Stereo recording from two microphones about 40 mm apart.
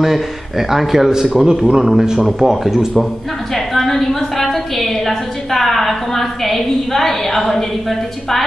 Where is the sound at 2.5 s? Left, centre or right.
Centre.